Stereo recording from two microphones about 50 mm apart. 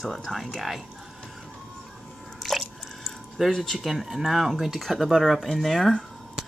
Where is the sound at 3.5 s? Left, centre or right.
Centre.